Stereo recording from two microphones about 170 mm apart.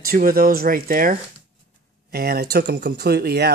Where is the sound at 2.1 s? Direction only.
70° right (ahead or behind).